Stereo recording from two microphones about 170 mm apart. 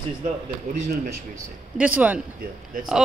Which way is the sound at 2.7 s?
55° right (ahead or behind).